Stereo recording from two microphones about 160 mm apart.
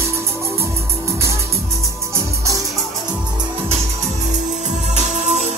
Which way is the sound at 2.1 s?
20° right (ahead or behind).